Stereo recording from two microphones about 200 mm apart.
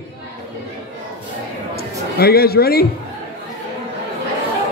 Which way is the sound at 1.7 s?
50° left (ahead or behind).